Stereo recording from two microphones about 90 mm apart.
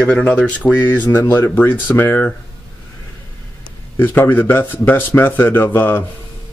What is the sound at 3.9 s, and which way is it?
Speech, 25° left (ahead or behind).